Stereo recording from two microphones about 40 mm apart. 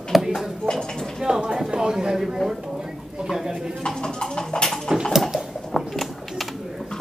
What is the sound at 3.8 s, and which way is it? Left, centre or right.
Clip-clop, centre.